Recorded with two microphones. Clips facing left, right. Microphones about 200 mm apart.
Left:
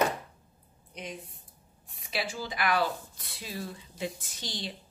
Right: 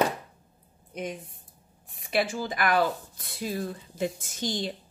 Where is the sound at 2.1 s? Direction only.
50° right (ahead or behind).